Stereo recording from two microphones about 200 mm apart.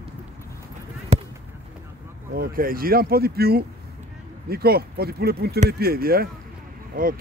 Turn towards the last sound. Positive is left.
turn(degrees=-45)  # may be behind; listen again after turning